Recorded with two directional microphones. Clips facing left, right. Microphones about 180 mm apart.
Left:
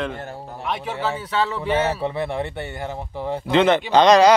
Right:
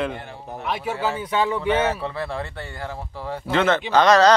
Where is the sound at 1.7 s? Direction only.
20° left (ahead or behind).